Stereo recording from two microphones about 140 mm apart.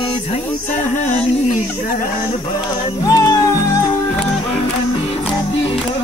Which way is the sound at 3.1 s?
25° left (ahead or behind).